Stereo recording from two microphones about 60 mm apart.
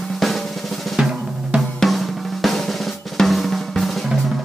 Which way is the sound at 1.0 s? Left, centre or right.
Centre.